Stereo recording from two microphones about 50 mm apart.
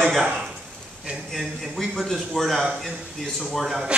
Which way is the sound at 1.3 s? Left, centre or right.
Centre.